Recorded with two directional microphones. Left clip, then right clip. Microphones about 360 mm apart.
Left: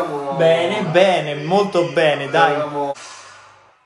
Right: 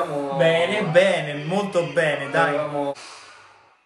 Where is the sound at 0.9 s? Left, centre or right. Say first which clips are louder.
Left 4 dB; centre.